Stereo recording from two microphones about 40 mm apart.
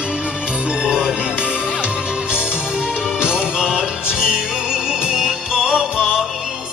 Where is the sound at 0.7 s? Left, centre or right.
Centre.